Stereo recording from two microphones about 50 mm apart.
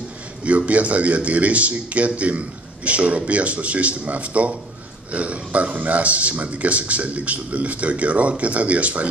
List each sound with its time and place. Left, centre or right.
0.5 s a man's voice: right